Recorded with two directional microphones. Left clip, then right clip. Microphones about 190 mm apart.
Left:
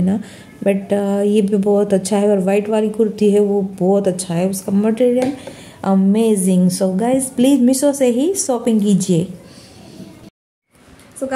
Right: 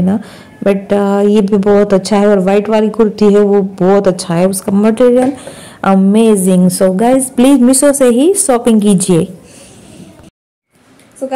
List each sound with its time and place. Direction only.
0.0 s a woman's voice: 5° right (ahead or behind); by 9.2 s 25° right (ahead or behind)